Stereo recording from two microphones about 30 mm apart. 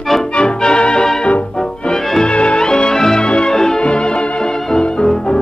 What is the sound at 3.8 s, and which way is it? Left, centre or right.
Music, left.